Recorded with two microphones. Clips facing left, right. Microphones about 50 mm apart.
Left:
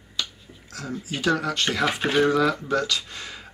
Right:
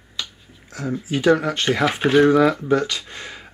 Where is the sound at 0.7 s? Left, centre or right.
Right.